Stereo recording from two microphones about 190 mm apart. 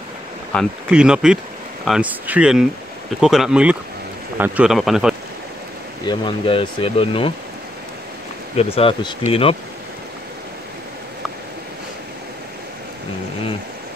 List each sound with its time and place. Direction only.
0.5 s speech: 5° left (ahead or behind)
6.0 s speech: 25° left (ahead or behind)
8.5 s speech: 30° left (ahead or behind)